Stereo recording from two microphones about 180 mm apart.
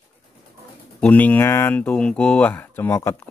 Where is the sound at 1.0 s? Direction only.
10° left (ahead or behind).